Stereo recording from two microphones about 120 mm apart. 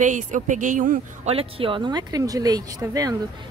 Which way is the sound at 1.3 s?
50° right (ahead or behind).